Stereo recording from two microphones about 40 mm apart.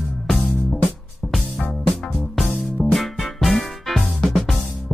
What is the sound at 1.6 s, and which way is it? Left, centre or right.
Music, left.